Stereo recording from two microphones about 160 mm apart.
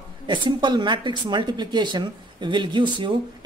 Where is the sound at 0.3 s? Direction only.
30° right (ahead or behind).